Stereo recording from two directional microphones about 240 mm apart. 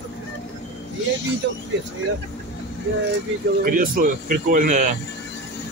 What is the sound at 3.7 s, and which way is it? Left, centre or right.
Speech, right.